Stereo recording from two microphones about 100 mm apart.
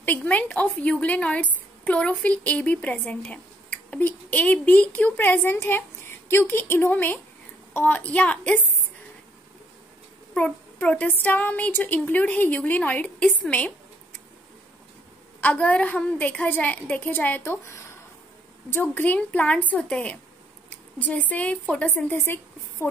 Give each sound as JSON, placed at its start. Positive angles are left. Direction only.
{"t": 0.0, "sound": "speech", "side_deg": 15}
{"t": 10.3, "sound": "speech", "side_deg": 15}
{"t": 15.4, "sound": "a woman's voice", "side_deg": 15}